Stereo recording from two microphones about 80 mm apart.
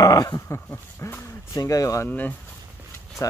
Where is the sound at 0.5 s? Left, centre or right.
Left.